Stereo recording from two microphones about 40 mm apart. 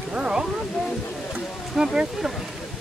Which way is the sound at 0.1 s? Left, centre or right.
Centre.